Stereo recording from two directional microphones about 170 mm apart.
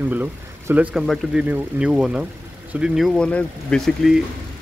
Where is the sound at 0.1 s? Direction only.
10° right (ahead or behind).